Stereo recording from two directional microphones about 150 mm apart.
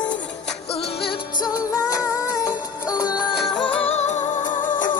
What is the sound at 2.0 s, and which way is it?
Music, 25° left (ahead or behind).